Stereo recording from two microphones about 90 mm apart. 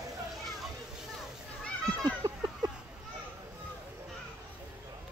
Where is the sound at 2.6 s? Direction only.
50° right (ahead or behind).